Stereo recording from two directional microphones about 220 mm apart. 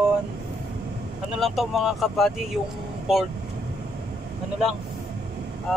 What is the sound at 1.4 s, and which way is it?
Speech, centre (ahead or behind).